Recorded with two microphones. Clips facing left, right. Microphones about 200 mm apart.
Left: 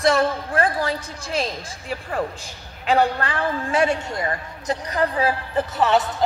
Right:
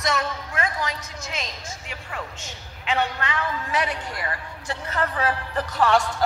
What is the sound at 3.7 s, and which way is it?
A woman's voice, 25° left (ahead or behind).